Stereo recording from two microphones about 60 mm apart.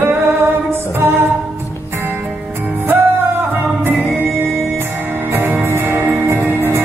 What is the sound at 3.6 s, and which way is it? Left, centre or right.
Music, right.